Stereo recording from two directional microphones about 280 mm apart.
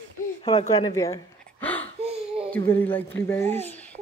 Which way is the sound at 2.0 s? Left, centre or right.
Centre.